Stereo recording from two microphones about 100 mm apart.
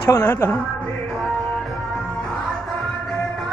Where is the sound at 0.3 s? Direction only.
20° left (ahead or behind).